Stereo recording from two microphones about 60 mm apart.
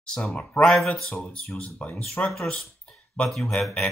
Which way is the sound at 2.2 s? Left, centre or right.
Left.